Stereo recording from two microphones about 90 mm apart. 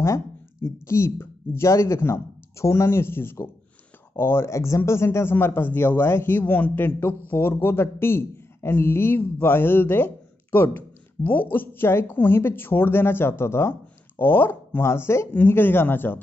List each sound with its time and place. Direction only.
0.0 s a woman's voice: 30° left (ahead or behind)